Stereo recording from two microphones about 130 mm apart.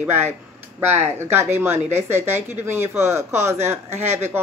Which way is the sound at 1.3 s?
20° right (ahead or behind).